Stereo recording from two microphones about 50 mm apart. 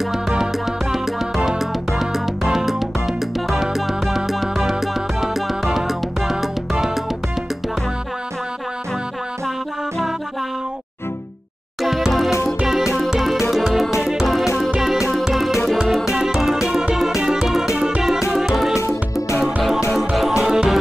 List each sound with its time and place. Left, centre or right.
0.3 s music: centre
11.8 s music: centre
17.7 s music: right
18.3 s music: centre
20.2 s music: centre